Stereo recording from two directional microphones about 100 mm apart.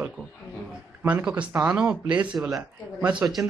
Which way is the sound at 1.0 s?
15° right (ahead or behind).